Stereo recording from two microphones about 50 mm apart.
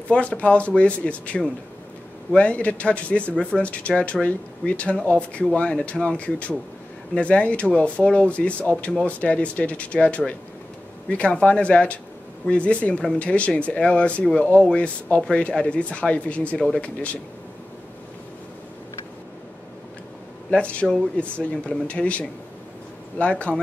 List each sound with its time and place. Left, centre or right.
0.1 s speech: left
16.5 s speech: centre
16.8 s speech: left
20.5 s speech: left